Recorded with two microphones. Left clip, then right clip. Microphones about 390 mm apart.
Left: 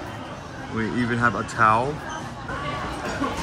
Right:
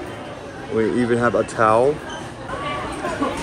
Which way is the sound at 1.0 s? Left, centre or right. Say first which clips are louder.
Right 2 dB; right.